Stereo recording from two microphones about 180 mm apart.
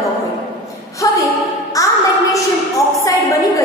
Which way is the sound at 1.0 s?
20° left (ahead or behind).